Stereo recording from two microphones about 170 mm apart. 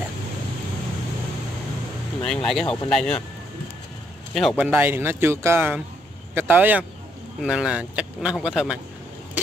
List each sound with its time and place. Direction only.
2.2 s speech: 5° left (ahead or behind)
4.3 s a man's voice: centre (ahead or behind)
4.6 s speech: 10° right (ahead or behind)